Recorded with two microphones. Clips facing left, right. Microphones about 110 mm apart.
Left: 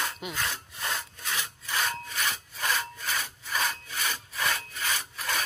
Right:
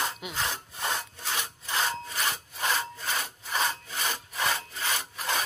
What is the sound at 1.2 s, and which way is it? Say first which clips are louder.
Sawing: even; 30° right (ahead or behind).